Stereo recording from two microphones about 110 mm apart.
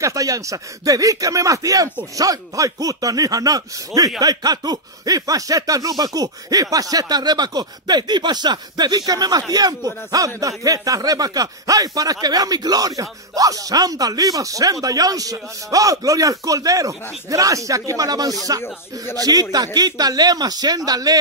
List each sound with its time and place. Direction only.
0.0 s speech: 30° right (ahead or behind)